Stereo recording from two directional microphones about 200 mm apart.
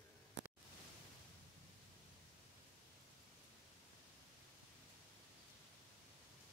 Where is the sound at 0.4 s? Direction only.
60° right (ahead or behind).